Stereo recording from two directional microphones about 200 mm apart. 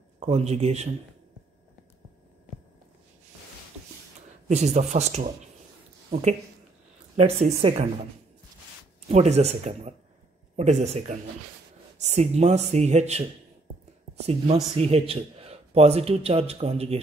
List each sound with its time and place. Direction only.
0.2 s speech: 30° right (ahead or behind)
4.5 s speech: 35° right (ahead or behind)
7.2 s speech: 30° right (ahead or behind)
9.1 s speech: 35° right (ahead or behind)
14.2 s speech: 30° right (ahead or behind)